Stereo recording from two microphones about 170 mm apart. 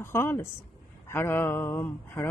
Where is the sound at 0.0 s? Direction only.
15° left (ahead or behind).